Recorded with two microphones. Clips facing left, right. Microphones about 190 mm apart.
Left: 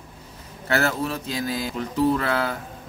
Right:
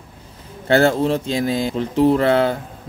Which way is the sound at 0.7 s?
30° right (ahead or behind).